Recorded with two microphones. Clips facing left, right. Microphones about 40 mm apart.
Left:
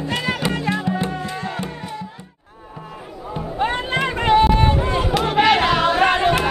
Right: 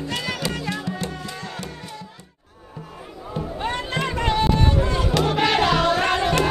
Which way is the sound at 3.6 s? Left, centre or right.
Left.